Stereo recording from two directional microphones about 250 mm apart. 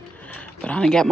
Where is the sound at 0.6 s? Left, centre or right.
Centre.